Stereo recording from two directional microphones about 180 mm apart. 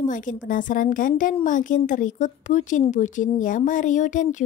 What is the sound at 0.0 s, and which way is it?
A woman's voice, 45° left (ahead or behind).